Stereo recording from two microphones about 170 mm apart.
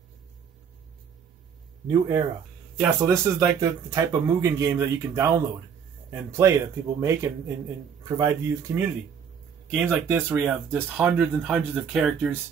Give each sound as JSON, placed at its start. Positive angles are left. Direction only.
{"t": 1.9, "sound": "speech", "side_deg": -25}